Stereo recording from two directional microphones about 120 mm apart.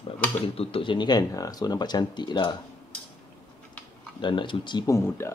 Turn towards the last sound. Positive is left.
turn(degrees=20)  # may be behind; listen again after turning